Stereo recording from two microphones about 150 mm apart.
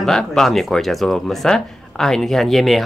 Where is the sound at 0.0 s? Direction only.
5° left (ahead or behind).